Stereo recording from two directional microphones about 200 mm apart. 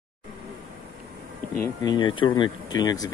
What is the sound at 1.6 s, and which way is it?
Speech, 20° left (ahead or behind).